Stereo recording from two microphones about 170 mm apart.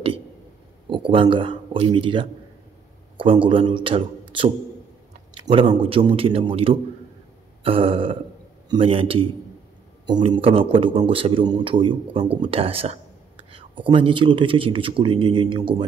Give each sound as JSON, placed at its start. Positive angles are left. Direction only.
{"t": 0.8, "sound": "speech", "side_deg": -30}
{"t": 5.5, "sound": "speech", "side_deg": -35}